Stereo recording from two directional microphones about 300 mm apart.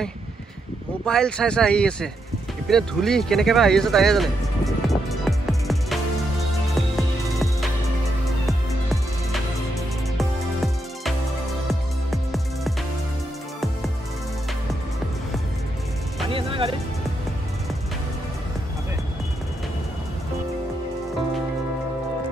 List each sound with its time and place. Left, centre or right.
1.0 s speech: centre
2.7 s music: centre
7.0 s music: centre
10.1 s music: centre
16.3 s music: centre